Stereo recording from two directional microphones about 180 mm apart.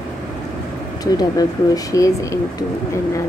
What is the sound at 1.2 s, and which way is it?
A woman's voice, 20° left (ahead or behind).